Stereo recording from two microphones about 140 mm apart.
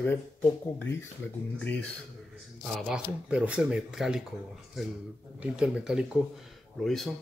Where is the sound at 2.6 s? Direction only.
Centre (ahead or behind).